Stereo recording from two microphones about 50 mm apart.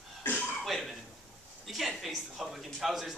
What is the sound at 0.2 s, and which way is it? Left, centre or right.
Cough, left.